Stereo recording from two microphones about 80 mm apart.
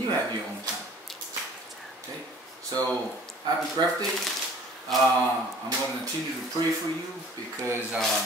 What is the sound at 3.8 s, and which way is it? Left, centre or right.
Speech, right.